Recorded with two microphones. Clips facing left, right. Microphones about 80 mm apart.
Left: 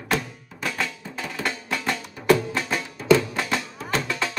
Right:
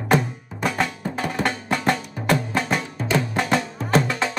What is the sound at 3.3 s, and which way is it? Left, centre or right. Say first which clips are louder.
Music: right 5 dB; right.